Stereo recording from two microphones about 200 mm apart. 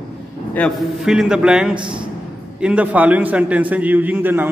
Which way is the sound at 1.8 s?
25° right (ahead or behind).